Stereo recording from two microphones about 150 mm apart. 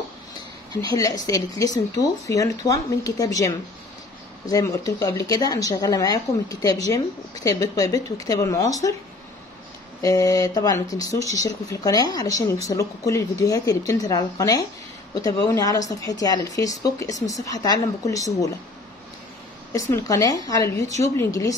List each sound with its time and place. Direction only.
0.7 s speech: 25° left (ahead or behind)
10.0 s speech: 25° left (ahead or behind)
19.7 s speech: 20° left (ahead or behind)